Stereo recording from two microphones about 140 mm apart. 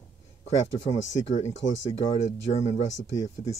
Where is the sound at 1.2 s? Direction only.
50° left (ahead or behind).